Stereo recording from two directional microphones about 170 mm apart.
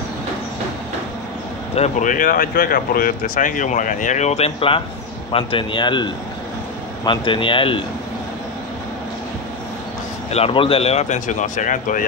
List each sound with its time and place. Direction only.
1.8 s a man's voice: 50° left (ahead or behind); by 7.8 s 30° left (ahead or behind)
10.3 s speech: 35° left (ahead or behind); by 12.1 s 50° left (ahead or behind)